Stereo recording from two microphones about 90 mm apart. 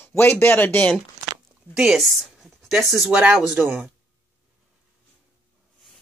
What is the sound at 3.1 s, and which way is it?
Speech, 15° right (ahead or behind).